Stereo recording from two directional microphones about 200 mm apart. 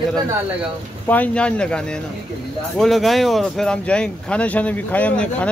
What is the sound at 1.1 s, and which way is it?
Speech, 5° left (ahead or behind).